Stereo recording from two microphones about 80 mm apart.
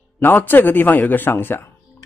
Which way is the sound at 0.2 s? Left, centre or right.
Left.